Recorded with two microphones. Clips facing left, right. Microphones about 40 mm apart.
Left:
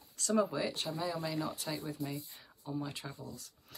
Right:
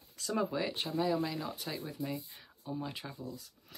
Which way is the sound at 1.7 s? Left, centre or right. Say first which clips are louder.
Left 1 dB; right.